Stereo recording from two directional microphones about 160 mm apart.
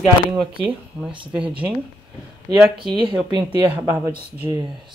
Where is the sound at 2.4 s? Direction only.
30° right (ahead or behind).